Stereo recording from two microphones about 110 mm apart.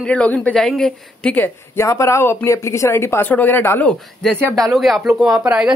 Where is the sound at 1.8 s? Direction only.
25° left (ahead or behind).